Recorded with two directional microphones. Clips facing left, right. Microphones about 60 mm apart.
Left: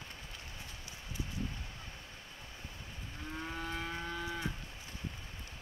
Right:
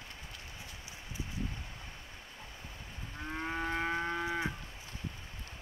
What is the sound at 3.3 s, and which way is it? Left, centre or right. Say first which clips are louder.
Livestock: right 5 dB; right.